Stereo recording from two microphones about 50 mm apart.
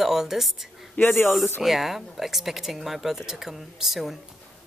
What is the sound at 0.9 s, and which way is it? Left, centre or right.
Speech, left.